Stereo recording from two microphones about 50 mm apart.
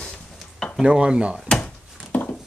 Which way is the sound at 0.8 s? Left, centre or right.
Centre.